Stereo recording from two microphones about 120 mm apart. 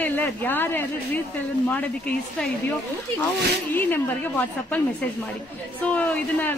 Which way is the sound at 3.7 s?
15° left (ahead or behind).